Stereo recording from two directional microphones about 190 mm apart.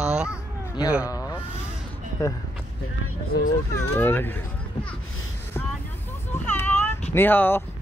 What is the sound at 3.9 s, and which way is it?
Speech, 10° left (ahead or behind).